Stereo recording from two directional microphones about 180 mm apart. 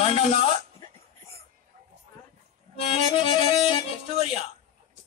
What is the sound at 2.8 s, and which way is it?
Music, 30° left (ahead or behind).